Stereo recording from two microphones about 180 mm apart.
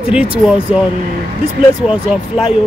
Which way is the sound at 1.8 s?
5° right (ahead or behind).